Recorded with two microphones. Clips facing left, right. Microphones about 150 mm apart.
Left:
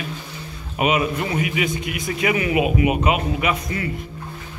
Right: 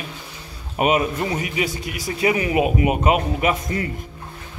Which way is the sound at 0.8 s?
40° right (ahead or behind).